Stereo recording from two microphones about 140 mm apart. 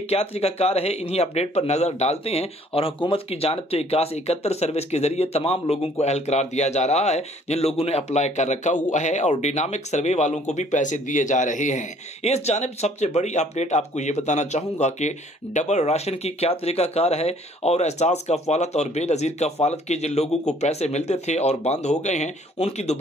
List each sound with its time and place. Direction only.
0.1 s a man's voice: 45° left (ahead or behind)